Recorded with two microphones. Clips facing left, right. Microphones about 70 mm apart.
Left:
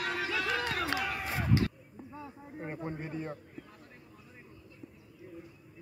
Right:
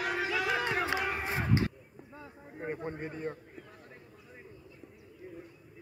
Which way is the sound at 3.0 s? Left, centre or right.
Centre.